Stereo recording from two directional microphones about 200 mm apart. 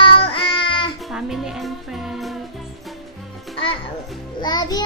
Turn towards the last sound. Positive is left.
turn(degrees=20)  # may be behind; listen again after turning